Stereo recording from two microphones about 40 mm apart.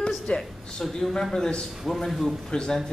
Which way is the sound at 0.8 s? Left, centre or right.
Centre.